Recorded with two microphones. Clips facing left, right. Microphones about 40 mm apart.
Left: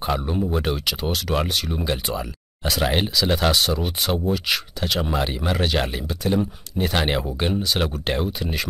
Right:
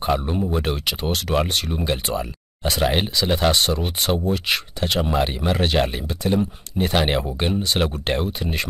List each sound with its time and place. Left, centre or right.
0.0 s speech: centre